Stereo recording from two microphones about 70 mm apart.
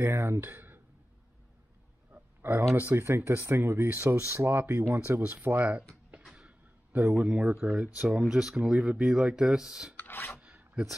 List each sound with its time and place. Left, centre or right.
0.2 s speech: right
2.4 s speech: right
5.5 s speech: centre
6.3 s a sound: right
7.2 s speech: centre
8.1 s speech: centre
9.9 s filing: left
10.4 s a sound: centre